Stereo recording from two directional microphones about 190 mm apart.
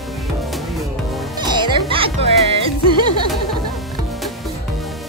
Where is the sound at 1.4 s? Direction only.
25° right (ahead or behind).